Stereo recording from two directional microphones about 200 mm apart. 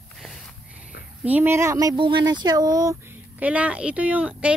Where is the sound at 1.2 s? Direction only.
10° right (ahead or behind).